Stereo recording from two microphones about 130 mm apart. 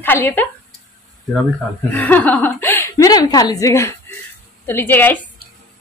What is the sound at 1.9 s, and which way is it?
A woman's voice, 10° left (ahead or behind).